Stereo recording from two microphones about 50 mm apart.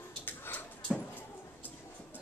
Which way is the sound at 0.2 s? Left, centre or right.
Left.